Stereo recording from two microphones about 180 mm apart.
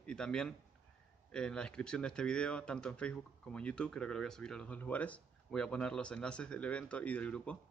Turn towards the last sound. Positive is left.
turn(degrees=5)  # may be behind; listen again after turning